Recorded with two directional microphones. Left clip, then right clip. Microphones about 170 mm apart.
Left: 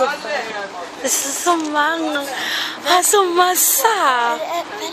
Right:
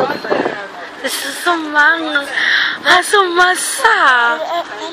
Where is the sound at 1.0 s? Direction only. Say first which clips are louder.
Right 2 dB; 15° left (ahead or behind).